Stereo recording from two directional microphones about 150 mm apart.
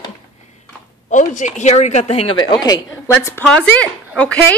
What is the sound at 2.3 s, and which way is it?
A woman's voice, 30° left (ahead or behind).